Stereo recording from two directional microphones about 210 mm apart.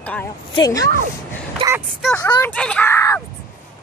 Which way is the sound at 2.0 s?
5° left (ahead or behind).